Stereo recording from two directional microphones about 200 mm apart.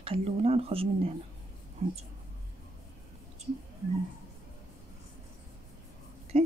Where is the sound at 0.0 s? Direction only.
30° right (ahead or behind).